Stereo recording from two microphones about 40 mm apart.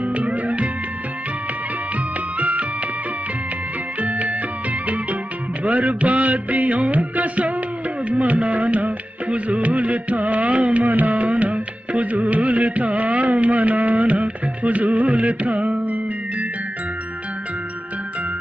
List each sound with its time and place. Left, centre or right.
0.0 s music: right
2.3 s music: right
4.0 s music: right
5.6 s music: right